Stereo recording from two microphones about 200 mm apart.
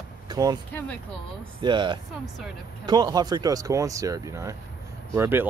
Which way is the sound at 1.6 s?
25° right (ahead or behind).